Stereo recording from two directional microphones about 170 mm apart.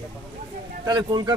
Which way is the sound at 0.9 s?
25° right (ahead or behind).